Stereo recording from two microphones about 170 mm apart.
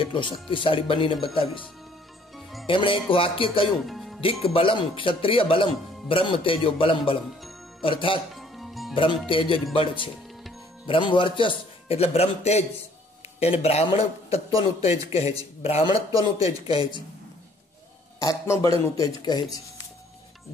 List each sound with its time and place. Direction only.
0.0 s a man's voice: 30° left (ahead or behind)
2.6 s a man's voice: 30° left (ahead or behind)
3.8 s music: centre (ahead or behind)
4.6 s a man's voice: 30° left (ahead or behind)
8.4 s music: centre (ahead or behind)
9.3 s a man's voice: 30° left (ahead or behind)
10.9 s a man's voice: 30° left (ahead or behind)
16.1 s speech: 20° right (ahead or behind)
16.6 s a man's voice: 30° left (ahead or behind)
18.2 s a man's voice: 20° left (ahead or behind)